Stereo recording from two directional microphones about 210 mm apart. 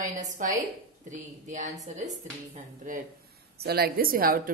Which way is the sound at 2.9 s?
40° right (ahead or behind).